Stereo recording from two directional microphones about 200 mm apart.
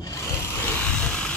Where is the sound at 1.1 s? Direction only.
5° left (ahead or behind).